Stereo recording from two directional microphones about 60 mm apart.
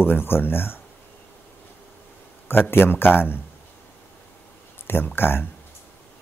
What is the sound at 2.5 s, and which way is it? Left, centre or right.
Speech, left.